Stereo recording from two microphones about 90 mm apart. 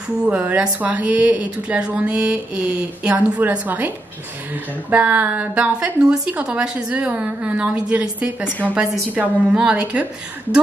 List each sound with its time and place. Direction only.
0.2 s a woman's voice: 15° right (ahead or behind)
4.9 s a woman's voice: 20° right (ahead or behind)
8.5 s a woman's voice: 15° left (ahead or behind)
8.7 s a woman's voice: 10° right (ahead or behind)